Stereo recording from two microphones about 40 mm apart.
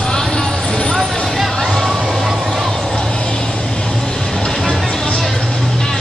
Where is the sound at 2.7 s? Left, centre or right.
Centre.